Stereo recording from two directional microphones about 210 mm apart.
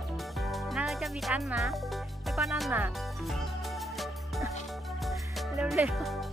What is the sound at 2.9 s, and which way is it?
Music, centre (ahead or behind).